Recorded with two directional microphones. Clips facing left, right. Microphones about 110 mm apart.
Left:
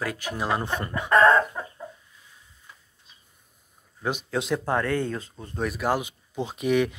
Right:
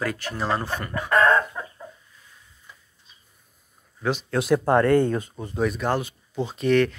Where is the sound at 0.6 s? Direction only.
20° left (ahead or behind).